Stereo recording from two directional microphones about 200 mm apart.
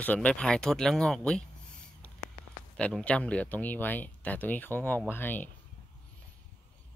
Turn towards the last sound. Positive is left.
turn(degrees=10)  # may be behind; listen again after turning